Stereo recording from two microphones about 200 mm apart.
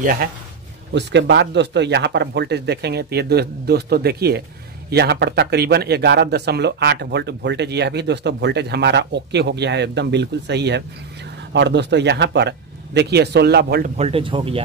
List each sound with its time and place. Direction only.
0.0 s a man's voice: 45° right (ahead or behind)
0.9 s speech: 60° right (ahead or behind)
13.9 s speech: 30° right (ahead or behind)